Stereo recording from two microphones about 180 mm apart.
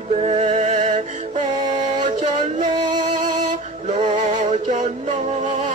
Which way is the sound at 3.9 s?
40° right (ahead or behind).